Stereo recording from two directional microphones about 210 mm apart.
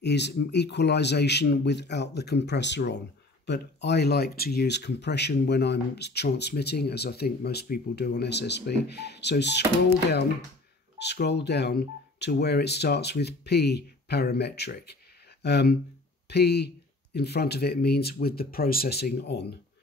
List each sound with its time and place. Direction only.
0.0 s speech: 55° left (ahead or behind)
11.0 s speech: 55° left (ahead or behind)